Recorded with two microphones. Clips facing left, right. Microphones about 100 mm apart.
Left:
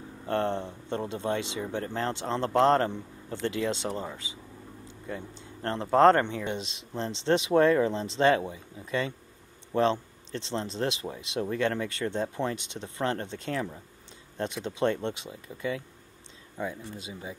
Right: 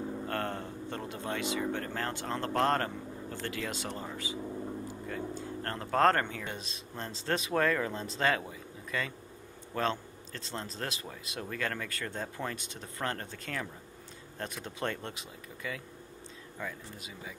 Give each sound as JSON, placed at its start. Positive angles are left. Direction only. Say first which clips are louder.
{"t": 0.3, "sound": "speech", "louder": "left 11 dB", "side_deg": 25}